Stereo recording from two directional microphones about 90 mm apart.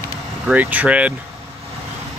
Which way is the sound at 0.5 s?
15° right (ahead or behind).